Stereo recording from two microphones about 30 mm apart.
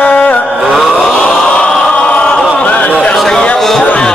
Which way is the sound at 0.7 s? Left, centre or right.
Centre.